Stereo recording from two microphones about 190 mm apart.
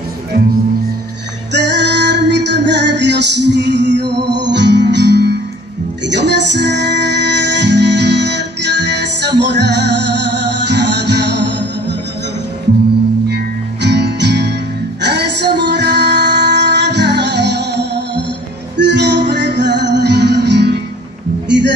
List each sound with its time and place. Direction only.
1.5 s music: 65° right (ahead or behind)
13.8 s music: 60° right (ahead or behind)